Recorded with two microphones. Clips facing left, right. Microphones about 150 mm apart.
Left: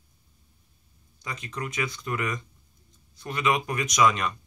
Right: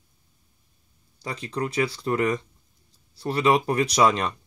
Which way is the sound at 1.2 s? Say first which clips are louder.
Right 6 dB; 35° right (ahead or behind).